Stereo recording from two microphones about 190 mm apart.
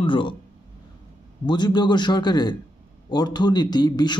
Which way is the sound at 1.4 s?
25° left (ahead or behind).